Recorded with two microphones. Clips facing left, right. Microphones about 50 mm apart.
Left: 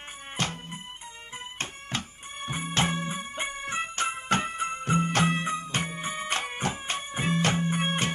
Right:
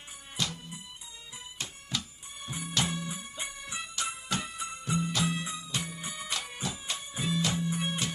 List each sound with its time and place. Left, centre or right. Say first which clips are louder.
0.4 s music: left 3 dB; left